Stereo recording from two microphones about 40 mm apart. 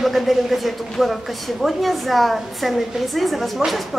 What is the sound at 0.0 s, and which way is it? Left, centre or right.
A woman's voice, centre.